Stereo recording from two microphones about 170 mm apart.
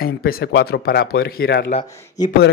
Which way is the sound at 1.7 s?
30° left (ahead or behind).